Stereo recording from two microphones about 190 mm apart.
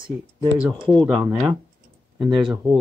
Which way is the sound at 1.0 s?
5° right (ahead or behind).